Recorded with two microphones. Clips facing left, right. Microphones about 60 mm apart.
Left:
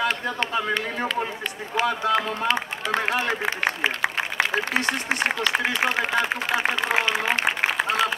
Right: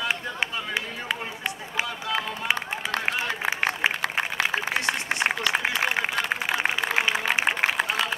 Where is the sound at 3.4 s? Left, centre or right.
Centre.